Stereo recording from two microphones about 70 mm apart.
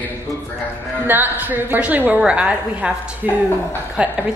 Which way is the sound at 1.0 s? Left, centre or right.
Right.